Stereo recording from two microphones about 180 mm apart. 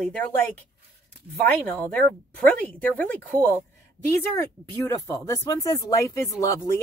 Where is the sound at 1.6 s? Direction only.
10° left (ahead or behind).